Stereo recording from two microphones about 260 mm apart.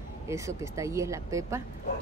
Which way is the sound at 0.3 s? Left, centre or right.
Centre.